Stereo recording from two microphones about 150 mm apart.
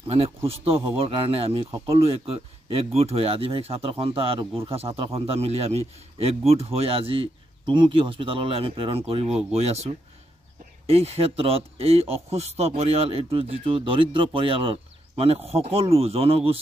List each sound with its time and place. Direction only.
0.0 s speech: 40° right (ahead or behind)